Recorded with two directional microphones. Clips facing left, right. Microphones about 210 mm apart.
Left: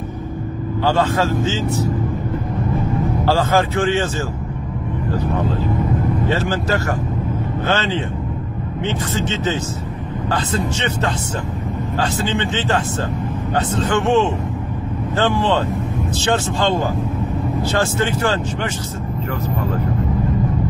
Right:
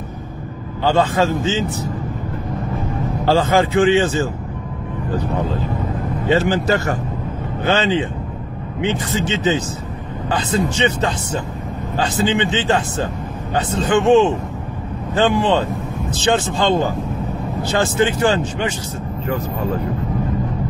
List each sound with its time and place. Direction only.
0.9 s a man's voice: 20° right (ahead or behind)
3.5 s speech: 15° right (ahead or behind)
6.2 s speech: 20° right (ahead or behind)
12.3 s speech: 15° right (ahead or behind)
17.7 s speech: 15° right (ahead or behind)